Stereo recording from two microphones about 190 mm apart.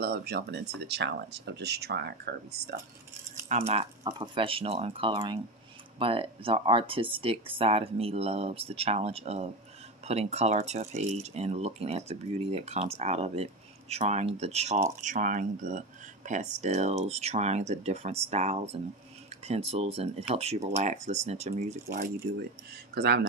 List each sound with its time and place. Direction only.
0.0 s speech: 55° right (ahead or behind)
3.4 s speech: 35° right (ahead or behind)
21.9 s speech: 50° right (ahead or behind)